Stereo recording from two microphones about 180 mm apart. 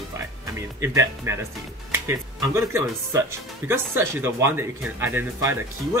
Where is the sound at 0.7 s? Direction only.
15° right (ahead or behind).